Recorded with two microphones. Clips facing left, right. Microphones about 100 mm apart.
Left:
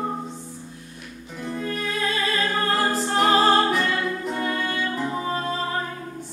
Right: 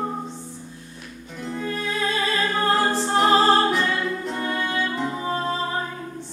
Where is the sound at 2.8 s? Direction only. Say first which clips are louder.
Right 1 dB; 30° right (ahead or behind).